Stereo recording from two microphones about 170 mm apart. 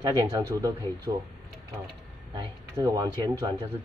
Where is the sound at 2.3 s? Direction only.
20° right (ahead or behind).